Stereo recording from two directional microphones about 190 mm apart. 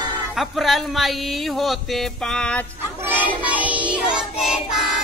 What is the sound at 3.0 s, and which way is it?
Child singing, 10° right (ahead or behind).